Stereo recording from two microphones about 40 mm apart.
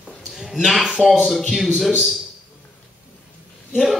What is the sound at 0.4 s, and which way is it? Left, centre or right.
A man's voice, centre.